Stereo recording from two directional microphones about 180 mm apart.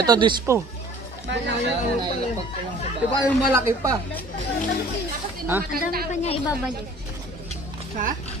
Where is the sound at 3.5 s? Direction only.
20° right (ahead or behind).